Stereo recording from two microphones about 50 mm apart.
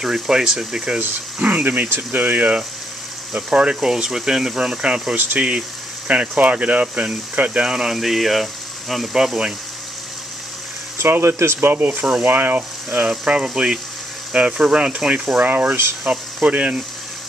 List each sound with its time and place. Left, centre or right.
0.0 s speech: centre
1.4 s speech: right
3.4 s speech: centre
5.1 s speech: right
7.7 s speech: centre
11.0 s speech: right
11.7 s speech: right
13.1 s speech: centre